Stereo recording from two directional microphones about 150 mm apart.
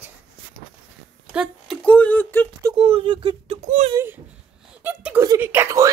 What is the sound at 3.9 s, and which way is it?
Speech, 15° right (ahead or behind).